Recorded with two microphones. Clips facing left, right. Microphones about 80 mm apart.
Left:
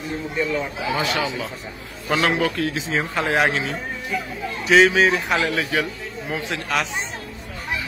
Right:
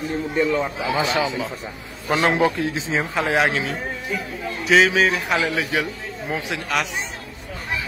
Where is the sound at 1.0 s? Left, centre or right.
Centre.